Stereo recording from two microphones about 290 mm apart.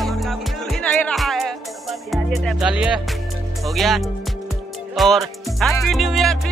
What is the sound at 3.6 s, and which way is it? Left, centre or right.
Speech, centre.